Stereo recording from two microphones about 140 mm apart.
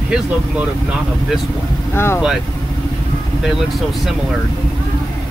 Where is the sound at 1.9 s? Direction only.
15° left (ahead or behind).